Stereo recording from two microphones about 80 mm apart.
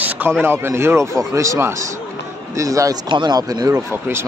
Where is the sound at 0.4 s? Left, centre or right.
Right.